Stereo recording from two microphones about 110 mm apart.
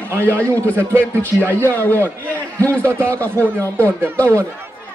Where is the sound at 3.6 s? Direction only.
15° left (ahead or behind).